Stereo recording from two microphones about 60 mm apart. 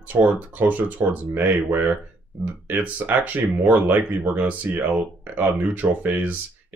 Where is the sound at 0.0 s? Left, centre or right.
Right.